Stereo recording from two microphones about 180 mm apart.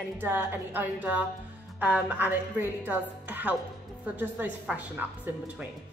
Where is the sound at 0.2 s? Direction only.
10° right (ahead or behind).